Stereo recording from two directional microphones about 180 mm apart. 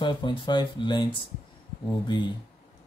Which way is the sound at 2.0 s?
25° left (ahead or behind).